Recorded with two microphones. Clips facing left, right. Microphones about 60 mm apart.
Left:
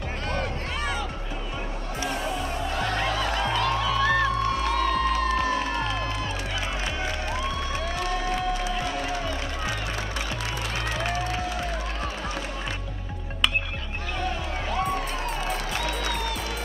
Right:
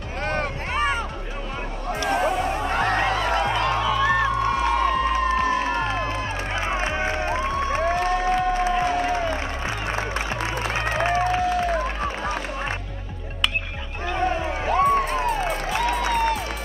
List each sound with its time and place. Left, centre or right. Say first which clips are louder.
0.2 s music: right 6 dB; right
2.0 s music: right 8 dB; right
3.8 s music: right 2 dB; centre
14.0 s music: right 8 dB; right